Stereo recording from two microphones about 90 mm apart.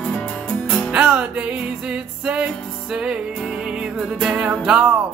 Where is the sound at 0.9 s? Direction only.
15° right (ahead or behind).